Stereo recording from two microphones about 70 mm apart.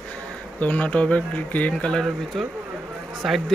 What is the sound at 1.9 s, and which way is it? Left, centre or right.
Speech, centre.